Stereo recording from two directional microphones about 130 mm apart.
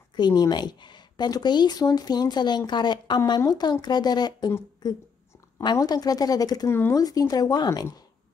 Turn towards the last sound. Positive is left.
turn(degrees=30)  # may be behind; listen again after turning